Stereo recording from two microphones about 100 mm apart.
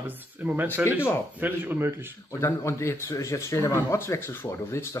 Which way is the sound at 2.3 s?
25° left (ahead or behind).